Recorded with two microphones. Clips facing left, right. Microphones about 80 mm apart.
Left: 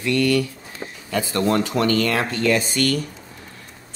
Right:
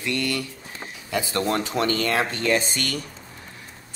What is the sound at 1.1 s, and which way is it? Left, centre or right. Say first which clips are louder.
Speech: left 4 dB; centre.